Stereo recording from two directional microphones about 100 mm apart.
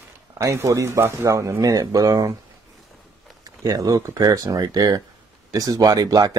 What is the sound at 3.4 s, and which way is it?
Speech, 35° right (ahead or behind).